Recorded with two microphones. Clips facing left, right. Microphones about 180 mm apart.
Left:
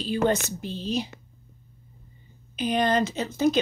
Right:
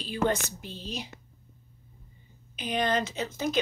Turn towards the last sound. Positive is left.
turn(degrees=30)  # may be behind; listen again after turning